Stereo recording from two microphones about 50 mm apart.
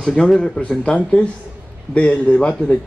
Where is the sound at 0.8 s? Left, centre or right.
Left.